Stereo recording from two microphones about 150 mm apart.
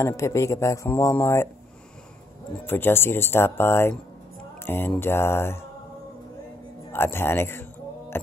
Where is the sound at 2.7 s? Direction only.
15° left (ahead or behind).